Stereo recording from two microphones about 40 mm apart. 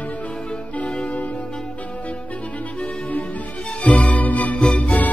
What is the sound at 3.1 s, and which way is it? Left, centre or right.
Music, left.